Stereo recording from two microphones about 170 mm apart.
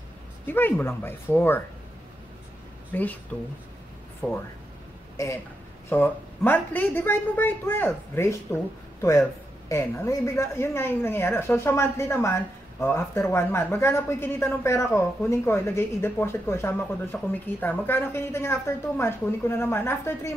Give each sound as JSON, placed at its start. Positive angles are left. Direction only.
{"t": 0.5, "sound": "a woman's voice", "side_deg": 10}
{"t": 2.9, "sound": "speech", "side_deg": 10}
{"t": 4.2, "sound": "a woman's voice", "side_deg": 10}
{"t": 9.7, "sound": "a woman's voice", "side_deg": 15}